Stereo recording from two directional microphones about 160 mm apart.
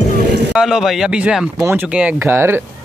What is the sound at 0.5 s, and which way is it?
Speech, centre (ahead or behind).